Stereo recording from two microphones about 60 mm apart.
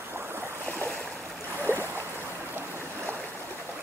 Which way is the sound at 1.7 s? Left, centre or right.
Left.